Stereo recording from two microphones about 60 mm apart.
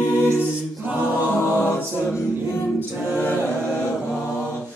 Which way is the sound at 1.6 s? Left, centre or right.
Left.